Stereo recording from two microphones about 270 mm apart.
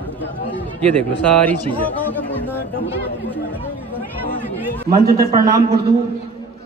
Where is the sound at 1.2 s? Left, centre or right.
Centre.